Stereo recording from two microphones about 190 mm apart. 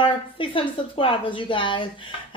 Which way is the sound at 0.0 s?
25° left (ahead or behind).